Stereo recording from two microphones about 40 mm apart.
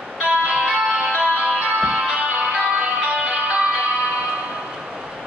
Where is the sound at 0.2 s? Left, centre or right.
Right.